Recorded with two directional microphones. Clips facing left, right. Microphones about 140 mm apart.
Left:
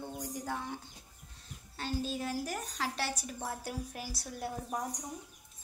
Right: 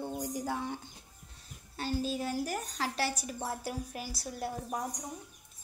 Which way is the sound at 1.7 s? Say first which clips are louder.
Right 3 dB; 5° right (ahead or behind).